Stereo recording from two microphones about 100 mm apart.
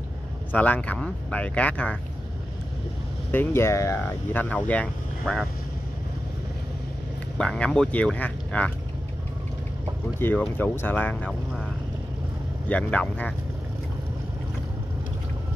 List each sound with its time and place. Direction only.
0.5 s speech: 15° left (ahead or behind)
3.3 s speech: 25° left (ahead or behind)
4.0 s speech: 20° left (ahead or behind)
7.3 s speech: 10° left (ahead or behind)
10.2 s speech: 20° left (ahead or behind)
12.6 s speech: 15° left (ahead or behind)